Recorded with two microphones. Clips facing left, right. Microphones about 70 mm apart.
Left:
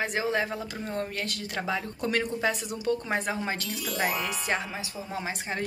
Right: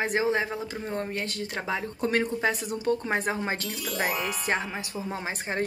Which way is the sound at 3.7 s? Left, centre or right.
Centre.